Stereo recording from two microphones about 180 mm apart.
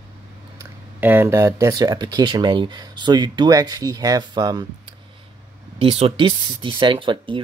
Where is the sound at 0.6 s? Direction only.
10° right (ahead or behind).